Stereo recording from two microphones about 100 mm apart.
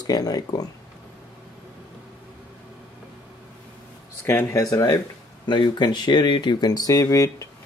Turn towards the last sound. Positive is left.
turn(degrees=35)  # may be behind; listen again after turning